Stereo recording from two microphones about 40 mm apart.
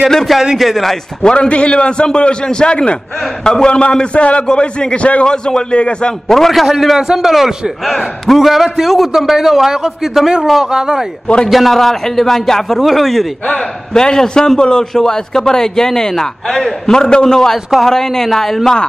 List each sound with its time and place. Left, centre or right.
0.1 s a man's voice: centre
1.2 s a man's voice: left
6.2 s a man's voice: centre
6.6 s a man's voice: centre
11.4 s a man's voice: centre
13.9 s a man's voice: centre